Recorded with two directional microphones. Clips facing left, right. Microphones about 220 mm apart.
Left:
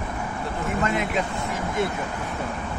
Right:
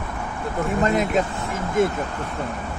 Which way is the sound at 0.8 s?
40° right (ahead or behind).